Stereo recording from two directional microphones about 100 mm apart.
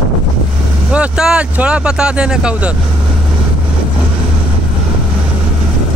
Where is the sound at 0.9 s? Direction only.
10° right (ahead or behind).